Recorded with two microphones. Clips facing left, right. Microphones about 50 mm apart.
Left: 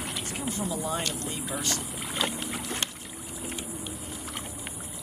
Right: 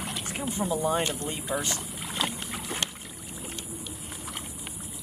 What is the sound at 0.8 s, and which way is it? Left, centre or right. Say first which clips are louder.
Speech: right 4 dB; centre.